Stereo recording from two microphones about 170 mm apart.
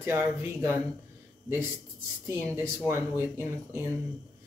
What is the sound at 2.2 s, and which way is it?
Speech, 15° right (ahead or behind).